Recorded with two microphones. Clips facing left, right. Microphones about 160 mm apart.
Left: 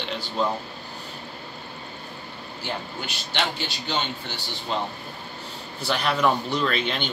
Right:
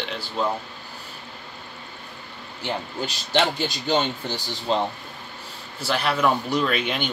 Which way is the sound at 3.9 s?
40° right (ahead or behind).